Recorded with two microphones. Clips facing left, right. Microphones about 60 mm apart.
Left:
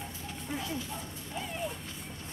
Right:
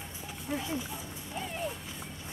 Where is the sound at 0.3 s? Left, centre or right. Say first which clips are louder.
Right 3 dB; centre.